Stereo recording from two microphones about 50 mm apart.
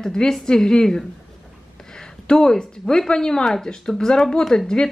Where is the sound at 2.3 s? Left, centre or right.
Centre.